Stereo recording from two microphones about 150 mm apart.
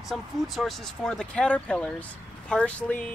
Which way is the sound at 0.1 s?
Centre (ahead or behind).